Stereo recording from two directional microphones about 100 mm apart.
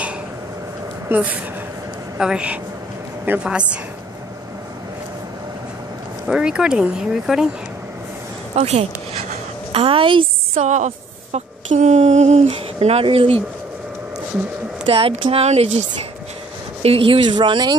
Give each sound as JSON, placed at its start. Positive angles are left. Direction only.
{"t": 1.0, "sound": "speech", "side_deg": -15}
{"t": 6.2, "sound": "speech", "side_deg": -10}
{"t": 8.5, "sound": "speech", "side_deg": -90}
{"t": 9.7, "sound": "a sound", "side_deg": -70}
{"t": 11.9, "sound": "speech", "side_deg": -90}
{"t": 14.9, "sound": "speech", "side_deg": -70}
{"t": 16.8, "sound": "speech", "side_deg": -70}